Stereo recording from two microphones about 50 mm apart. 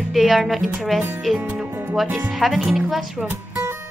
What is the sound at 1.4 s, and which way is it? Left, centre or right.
Music, right.